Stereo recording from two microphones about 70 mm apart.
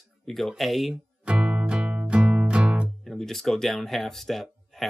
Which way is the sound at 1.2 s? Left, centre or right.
Centre.